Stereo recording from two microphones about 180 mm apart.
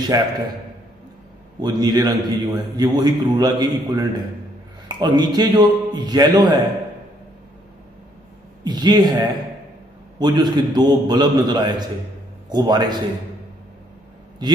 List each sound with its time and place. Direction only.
0.1 s a man's voice: 20° right (ahead or behind)
1.6 s a man's voice: 25° right (ahead or behind)
8.6 s a man's voice: 25° right (ahead or behind)
14.4 s a man's voice: 25° right (ahead or behind)